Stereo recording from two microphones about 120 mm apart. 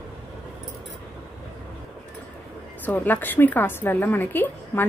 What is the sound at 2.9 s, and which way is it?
A woman's voice, 15° left (ahead or behind).